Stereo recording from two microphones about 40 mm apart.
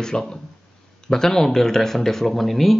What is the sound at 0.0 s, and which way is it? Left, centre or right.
Speech, centre.